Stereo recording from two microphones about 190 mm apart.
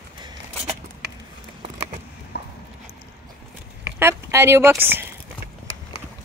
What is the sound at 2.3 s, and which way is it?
Clip-clop, 60° left (ahead or behind).